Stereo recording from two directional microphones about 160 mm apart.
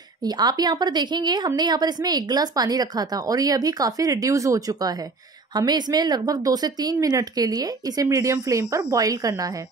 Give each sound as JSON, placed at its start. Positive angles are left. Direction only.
{"t": 0.2, "sound": "a woman's voice", "side_deg": -25}